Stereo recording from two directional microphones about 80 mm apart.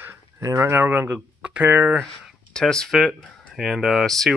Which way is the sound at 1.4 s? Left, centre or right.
Centre.